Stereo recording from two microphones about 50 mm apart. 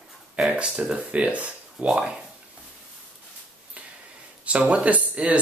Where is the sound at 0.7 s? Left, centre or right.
Centre.